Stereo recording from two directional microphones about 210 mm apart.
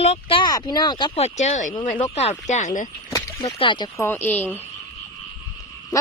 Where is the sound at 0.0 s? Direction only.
30° left (ahead or behind).